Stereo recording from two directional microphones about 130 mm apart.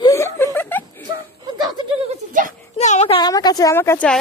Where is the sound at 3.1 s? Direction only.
30° left (ahead or behind).